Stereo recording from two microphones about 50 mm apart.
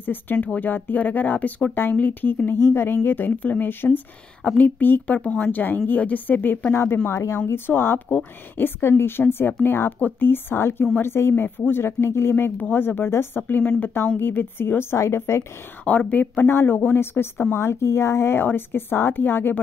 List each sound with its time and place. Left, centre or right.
0.0 s a woman's voice: left
2.6 s a woman's voice: left
11.4 s speech: left
13.4 s a woman's voice: left
14.2 s speech: left
15.0 s a woman's voice: left
15.8 s a woman's voice: left